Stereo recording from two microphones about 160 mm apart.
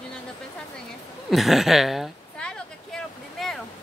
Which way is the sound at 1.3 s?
Centre (ahead or behind).